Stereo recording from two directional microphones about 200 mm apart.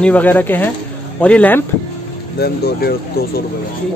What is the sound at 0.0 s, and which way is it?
Speech, 10° left (ahead or behind).